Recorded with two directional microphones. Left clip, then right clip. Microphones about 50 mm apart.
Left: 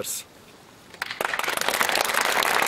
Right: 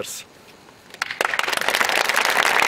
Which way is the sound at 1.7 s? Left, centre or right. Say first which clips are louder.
Right 4 dB; right.